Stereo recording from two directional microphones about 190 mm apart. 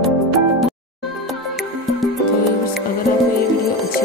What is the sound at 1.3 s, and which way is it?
Music, centre (ahead or behind).